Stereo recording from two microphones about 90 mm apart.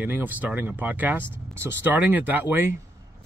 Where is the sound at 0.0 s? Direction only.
20° right (ahead or behind).